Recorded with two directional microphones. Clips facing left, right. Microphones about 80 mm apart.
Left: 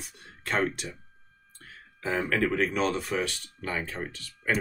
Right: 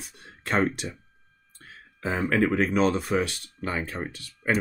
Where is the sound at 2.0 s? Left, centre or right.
Centre.